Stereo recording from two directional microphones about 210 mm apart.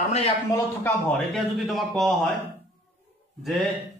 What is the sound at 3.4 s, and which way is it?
Speech, centre (ahead or behind).